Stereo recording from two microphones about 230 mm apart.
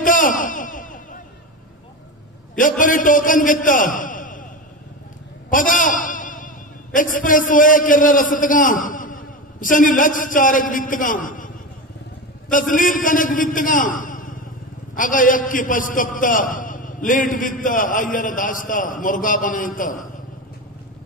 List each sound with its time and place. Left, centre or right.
0.0 s a sound: left
2.5 s a man's voice: left
5.5 s a man's voice: left